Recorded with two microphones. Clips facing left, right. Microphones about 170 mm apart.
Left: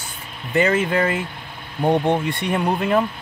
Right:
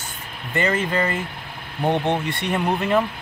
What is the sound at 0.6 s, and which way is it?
Speech, 10° left (ahead or behind).